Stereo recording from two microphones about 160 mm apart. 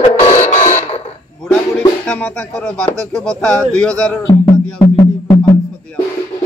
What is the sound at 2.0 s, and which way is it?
Speech, 5° left (ahead or behind).